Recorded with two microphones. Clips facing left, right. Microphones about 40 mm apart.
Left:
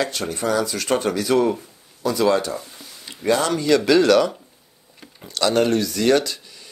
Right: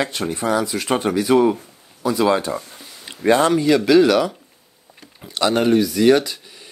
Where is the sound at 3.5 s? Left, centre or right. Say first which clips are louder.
Right 2 dB; centre.